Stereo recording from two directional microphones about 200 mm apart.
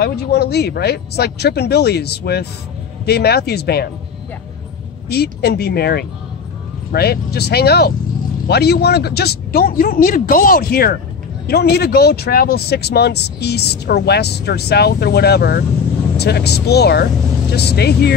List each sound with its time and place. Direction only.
0.0 s speech: 55° left (ahead or behind)
5.1 s speech: 55° left (ahead or behind)